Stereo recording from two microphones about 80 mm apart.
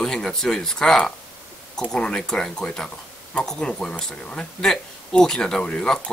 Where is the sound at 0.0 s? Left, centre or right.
Centre.